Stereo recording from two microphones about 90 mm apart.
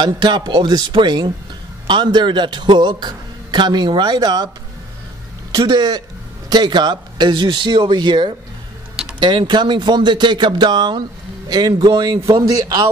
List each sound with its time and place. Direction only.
0.0 s speech: 60° right (ahead or behind)
5.5 s speech: 45° right (ahead or behind)